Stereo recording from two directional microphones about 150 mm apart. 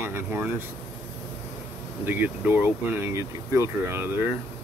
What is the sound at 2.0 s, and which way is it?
Speech, 10° right (ahead or behind).